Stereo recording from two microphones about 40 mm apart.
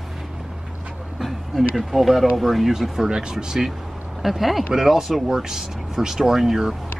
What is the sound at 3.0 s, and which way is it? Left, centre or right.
Speech, centre.